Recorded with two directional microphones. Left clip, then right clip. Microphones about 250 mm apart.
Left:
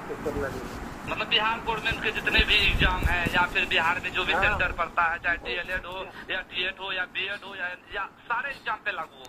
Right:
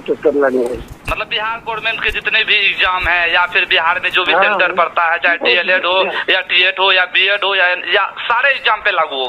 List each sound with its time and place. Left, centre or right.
1.9 s speech: right